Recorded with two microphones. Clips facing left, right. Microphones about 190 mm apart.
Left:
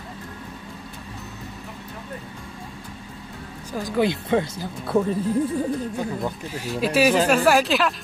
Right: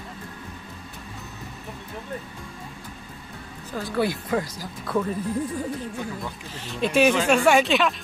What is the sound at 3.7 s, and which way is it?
Speech, 15° left (ahead or behind).